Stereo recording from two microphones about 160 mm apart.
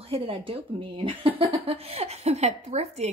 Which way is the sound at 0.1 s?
35° right (ahead or behind).